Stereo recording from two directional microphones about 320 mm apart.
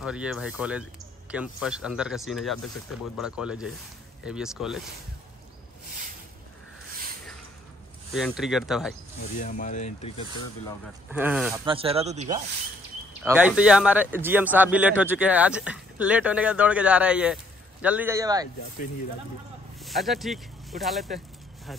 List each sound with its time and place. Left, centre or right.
0.0 s speech: centre
8.1 s speech: centre
9.4 s speech: left
11.1 s speech: centre
11.6 s speech: centre
13.2 s speech: centre
19.8 s speech: centre